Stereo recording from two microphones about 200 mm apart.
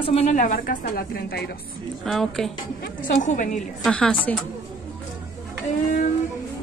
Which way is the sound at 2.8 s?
40° left (ahead or behind).